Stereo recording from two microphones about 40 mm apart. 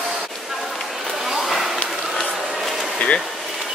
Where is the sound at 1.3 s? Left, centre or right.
Centre.